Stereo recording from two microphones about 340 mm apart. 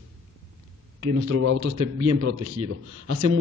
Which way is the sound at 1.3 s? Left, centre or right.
Right.